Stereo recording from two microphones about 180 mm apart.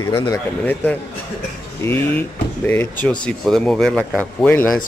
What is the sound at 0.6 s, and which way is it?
Speech, 10° left (ahead or behind).